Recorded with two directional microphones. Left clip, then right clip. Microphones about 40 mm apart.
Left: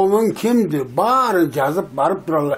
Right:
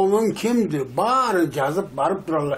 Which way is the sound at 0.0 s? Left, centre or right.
Left.